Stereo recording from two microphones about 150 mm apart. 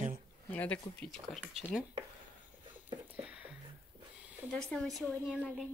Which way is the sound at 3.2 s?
10° right (ahead or behind).